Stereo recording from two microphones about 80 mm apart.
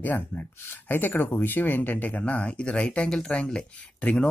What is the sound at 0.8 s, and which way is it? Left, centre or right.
Speech, left.